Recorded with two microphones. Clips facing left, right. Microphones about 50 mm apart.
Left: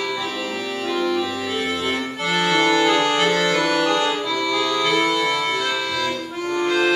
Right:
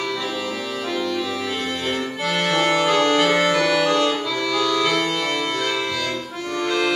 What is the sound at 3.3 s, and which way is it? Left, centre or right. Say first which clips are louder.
Organ: right 1 dB; right.